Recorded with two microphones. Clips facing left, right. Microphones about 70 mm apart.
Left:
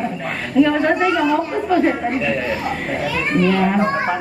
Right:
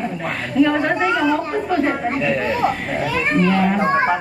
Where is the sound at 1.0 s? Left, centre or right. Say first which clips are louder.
Left 1 dB; centre.